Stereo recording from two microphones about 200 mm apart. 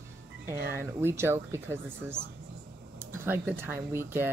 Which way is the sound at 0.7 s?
10° right (ahead or behind).